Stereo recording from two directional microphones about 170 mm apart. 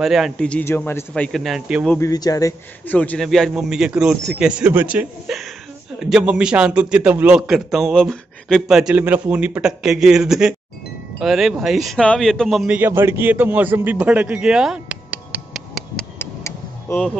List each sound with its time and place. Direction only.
0.0 s a man's voice: centre (ahead or behind)
2.0 s speech: 20° left (ahead or behind)
2.9 s a man's voice: 10° left (ahead or behind)
16.2 s vehicle: 15° left (ahead or behind)